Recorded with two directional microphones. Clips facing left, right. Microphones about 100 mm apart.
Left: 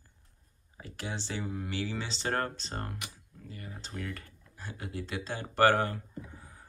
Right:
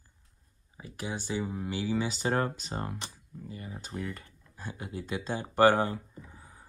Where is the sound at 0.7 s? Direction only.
15° right (ahead or behind).